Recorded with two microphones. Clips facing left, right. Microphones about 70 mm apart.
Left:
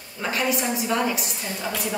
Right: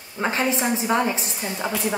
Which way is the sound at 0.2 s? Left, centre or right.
Right.